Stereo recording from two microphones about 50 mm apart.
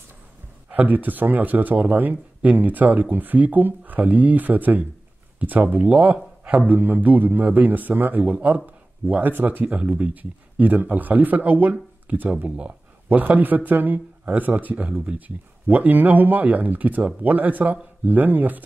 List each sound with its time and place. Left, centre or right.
0.7 s speech: right
9.8 s speech: right